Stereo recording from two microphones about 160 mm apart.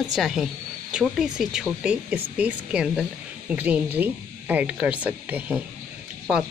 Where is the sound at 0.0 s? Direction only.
Centre (ahead or behind).